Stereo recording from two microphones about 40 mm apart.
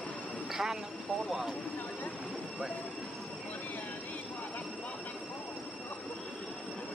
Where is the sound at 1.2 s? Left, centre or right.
Centre.